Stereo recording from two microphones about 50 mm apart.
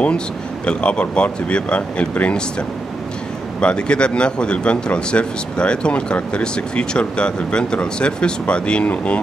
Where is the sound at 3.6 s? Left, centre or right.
Left.